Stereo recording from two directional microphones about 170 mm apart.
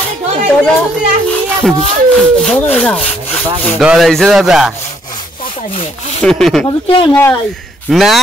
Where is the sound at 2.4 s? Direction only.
Centre (ahead or behind).